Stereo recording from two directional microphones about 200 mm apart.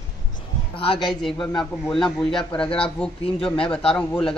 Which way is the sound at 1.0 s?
Centre (ahead or behind).